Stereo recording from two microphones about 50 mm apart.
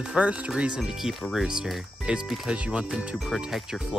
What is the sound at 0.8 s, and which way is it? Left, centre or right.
Speech, centre.